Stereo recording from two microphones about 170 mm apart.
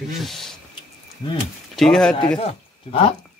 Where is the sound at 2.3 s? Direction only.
35° left (ahead or behind).